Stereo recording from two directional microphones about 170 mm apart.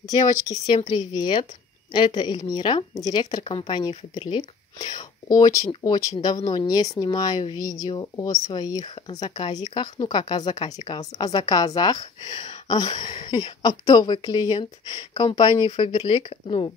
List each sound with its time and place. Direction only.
0.7 s speech: 25° left (ahead or behind)